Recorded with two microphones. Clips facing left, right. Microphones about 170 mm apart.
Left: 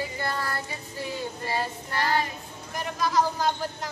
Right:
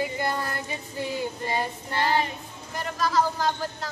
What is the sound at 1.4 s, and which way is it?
Child singing, 20° right (ahead or behind).